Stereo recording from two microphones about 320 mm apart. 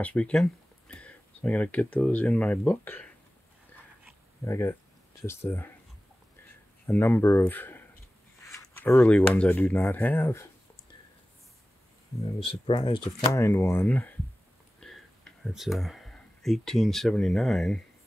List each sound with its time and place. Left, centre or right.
0.0 s speech: centre
4.5 s speech: centre
6.9 s speech: centre
12.2 s speech: centre